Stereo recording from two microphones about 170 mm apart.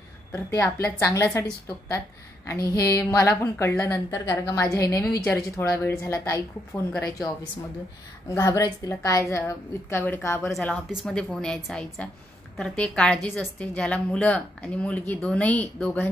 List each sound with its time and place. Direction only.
0.3 s a woman's voice: 15° left (ahead or behind)
2.4 s a woman's voice: 20° left (ahead or behind)
8.3 s a woman's voice: 20° left (ahead or behind)
10.5 s a woman's voice: centre (ahead or behind)